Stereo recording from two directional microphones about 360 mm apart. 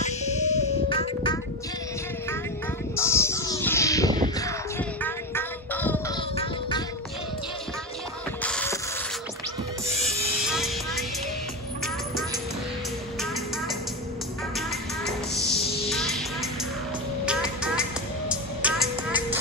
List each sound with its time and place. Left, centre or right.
0.0 s music: centre
3.0 s a sound: centre
4.4 s child singing: centre
8.4 s music: centre
10.0 s music: centre
15.0 s music: centre